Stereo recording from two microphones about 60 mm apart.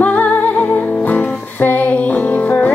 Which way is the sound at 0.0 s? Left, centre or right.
Left.